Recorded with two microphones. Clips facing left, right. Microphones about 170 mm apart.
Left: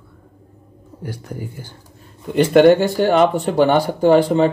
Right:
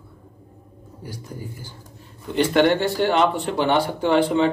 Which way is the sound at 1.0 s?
65° left (ahead or behind).